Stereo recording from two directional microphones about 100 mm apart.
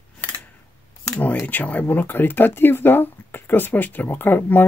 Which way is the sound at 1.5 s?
15° left (ahead or behind).